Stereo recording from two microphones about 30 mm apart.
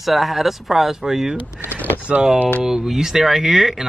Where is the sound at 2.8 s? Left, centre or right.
Centre.